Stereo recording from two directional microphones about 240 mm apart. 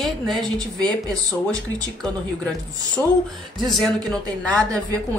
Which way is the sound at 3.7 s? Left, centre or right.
Centre.